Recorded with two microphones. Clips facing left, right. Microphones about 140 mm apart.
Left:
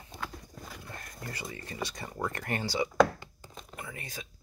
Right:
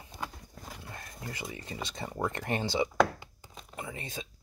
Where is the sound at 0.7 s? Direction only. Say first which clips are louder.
Right 2 dB; 20° right (ahead or behind).